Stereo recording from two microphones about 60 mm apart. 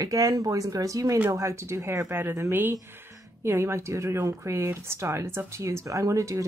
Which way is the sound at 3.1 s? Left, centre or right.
Right.